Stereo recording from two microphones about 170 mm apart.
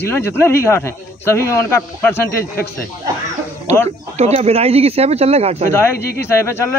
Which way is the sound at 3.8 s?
40° right (ahead or behind).